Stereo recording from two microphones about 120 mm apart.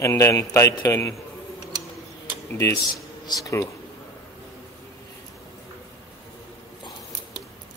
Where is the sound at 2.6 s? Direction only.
30° left (ahead or behind).